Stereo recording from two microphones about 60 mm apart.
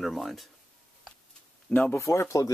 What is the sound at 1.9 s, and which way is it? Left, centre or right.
Speech, left.